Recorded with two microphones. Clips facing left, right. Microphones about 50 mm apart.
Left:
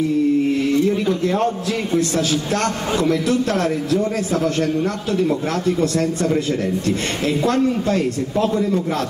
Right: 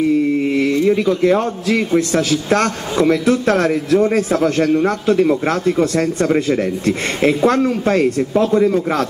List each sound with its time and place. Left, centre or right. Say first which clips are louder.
0.8 s a man's voice: right 5 dB; right